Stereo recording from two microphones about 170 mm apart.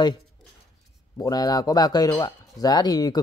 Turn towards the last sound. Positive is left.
turn(degrees=20)  # may be behind; listen again after turning